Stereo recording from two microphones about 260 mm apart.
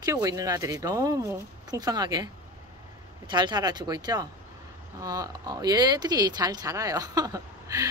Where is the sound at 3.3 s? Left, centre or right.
Centre.